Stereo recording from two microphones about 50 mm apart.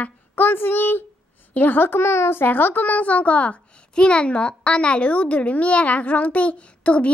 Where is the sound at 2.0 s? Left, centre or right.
Left.